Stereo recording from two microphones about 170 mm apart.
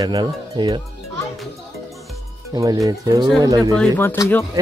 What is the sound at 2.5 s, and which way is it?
Speech, 20° right (ahead or behind).